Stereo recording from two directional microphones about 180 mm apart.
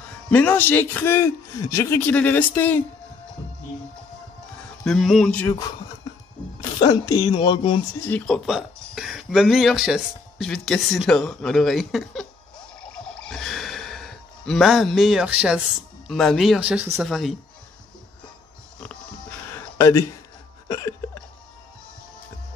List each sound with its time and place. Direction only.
0.3 s a man's voice: 10° left (ahead or behind)
4.8 s speech: centre (ahead or behind)
6.9 s speech: 20° left (ahead or behind)
8.1 s a man's voice: 10° left (ahead or behind)
8.5 s speech: centre (ahead or behind)
13.1 s gasp: 5° left (ahead or behind)
16.1 s speech: centre (ahead or behind)
19.5 s a sound: 15° left (ahead or behind)
20.6 s hiccup: 20° left (ahead or behind)